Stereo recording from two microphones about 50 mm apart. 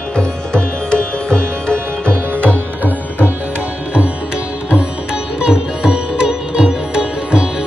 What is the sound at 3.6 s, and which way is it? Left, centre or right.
Sitar, right.